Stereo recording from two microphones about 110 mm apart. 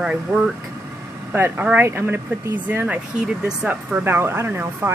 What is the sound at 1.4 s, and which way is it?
Speech, 15° right (ahead or behind).